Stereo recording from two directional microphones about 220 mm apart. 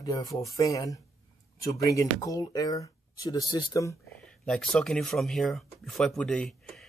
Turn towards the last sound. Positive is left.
turn(degrees=0)  # may be behind; listen again after turning